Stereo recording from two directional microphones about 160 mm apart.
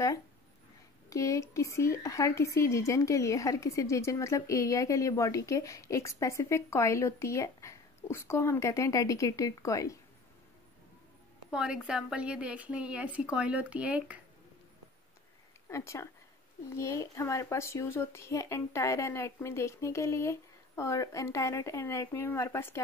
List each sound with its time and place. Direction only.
1.1 s a woman's voice: 20° left (ahead or behind)
11.5 s a woman's voice: 5° right (ahead or behind)
15.7 s speech: 15° left (ahead or behind)